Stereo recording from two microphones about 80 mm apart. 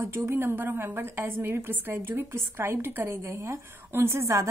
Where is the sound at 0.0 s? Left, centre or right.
Right.